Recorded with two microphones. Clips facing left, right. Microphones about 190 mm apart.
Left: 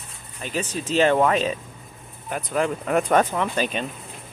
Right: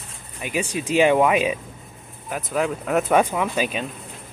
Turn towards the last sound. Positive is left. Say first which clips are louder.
# right 1 dB
turn(degrees=-5)  # may be behind; listen again after turning